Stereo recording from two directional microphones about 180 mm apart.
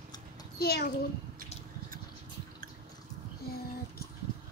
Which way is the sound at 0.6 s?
60° left (ahead or behind).